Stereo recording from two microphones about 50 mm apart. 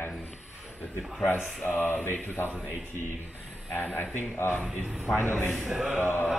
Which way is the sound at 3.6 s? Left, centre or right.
Left.